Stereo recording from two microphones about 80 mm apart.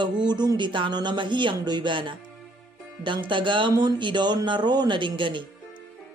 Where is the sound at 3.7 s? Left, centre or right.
Right.